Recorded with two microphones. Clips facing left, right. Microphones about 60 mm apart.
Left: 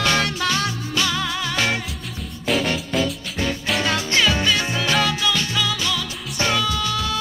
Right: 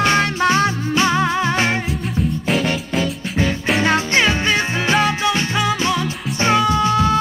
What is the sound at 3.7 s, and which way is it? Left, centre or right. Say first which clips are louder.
Music: right 6 dB; right.